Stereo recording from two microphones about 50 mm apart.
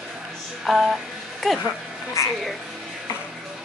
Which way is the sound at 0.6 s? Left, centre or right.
Centre.